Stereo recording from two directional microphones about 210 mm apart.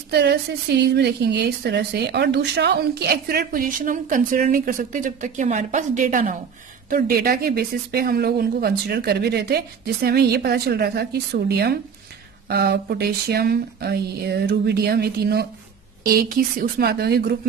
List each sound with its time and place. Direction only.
0.1 s a woman's voice: 50° right (ahead or behind)